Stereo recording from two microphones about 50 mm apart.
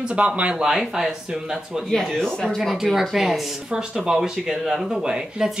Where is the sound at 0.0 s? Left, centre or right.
Centre.